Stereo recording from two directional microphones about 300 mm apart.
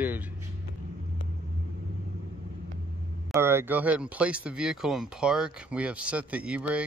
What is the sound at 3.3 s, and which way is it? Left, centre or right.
Speech, centre.